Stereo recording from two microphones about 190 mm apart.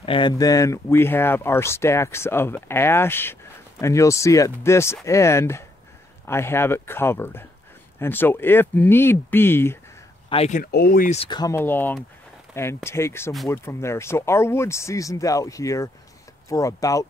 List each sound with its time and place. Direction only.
0.0 s speech: 25° left (ahead or behind)
10.3 s speech: 35° left (ahead or behind)
10.6 s speech: 55° left (ahead or behind)
11.1 s speech: 25° left (ahead or behind)